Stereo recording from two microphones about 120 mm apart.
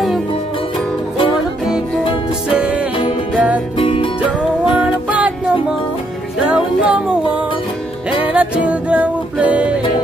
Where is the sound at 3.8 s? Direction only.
45° left (ahead or behind).